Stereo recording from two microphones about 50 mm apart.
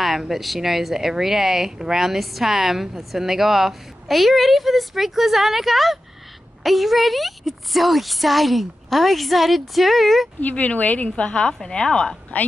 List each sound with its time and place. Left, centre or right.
0.0 s speech: centre
10.4 s speech: left
11.1 s a woman's voice: centre